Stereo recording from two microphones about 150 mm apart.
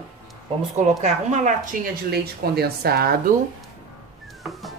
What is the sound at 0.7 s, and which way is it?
Speech, 50° right (ahead or behind).